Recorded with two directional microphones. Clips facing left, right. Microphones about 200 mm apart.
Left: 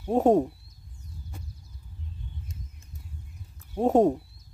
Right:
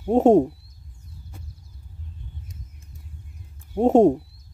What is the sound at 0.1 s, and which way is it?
Speech, 25° right (ahead or behind).